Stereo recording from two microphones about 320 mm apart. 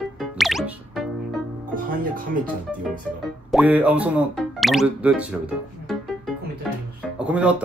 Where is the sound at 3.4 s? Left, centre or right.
Centre.